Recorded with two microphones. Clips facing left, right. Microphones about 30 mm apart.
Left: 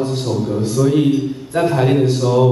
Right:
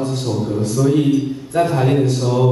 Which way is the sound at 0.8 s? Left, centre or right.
Centre.